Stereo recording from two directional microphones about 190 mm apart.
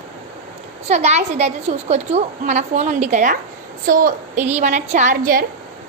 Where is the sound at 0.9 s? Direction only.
35° right (ahead or behind).